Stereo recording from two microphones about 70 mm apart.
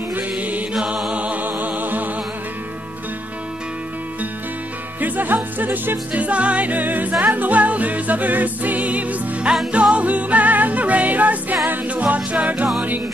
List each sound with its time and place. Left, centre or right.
0.1 s music: right
0.7 s music: centre
1.1 s music: centre
5.0 s music: right